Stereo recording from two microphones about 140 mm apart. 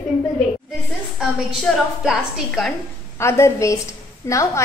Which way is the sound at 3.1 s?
20° left (ahead or behind).